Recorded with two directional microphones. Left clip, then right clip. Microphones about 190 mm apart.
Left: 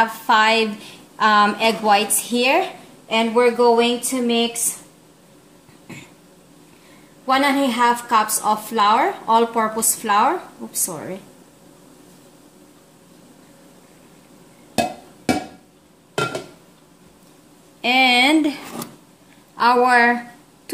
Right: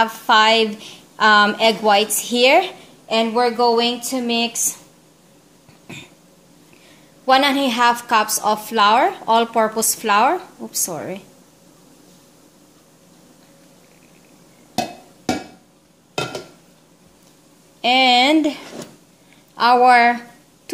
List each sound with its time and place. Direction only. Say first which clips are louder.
0.0 s a woman's voice: right 2 dB; 25° right (ahead or behind); by 4.7 s 50° right (ahead or behind)
7.2 s a woman's voice: right 2 dB; 45° right (ahead or behind)
17.8 s speech: right 1 dB; 20° right (ahead or behind)